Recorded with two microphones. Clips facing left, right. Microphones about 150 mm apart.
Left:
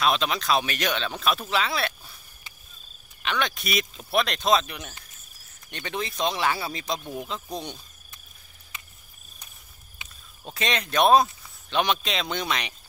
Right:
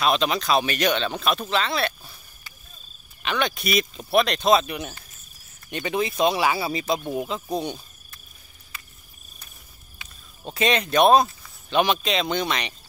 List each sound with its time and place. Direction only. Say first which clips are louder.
0.0 s speech: right 2 dB; centre (ahead or behind)
3.2 s speech: right 3 dB; centre (ahead or behind)
8.7 s cricket: even; 20° left (ahead or behind)
10.0 s a sound: even; 20° left (ahead or behind)
10.5 s speech: right 5 dB; centre (ahead or behind)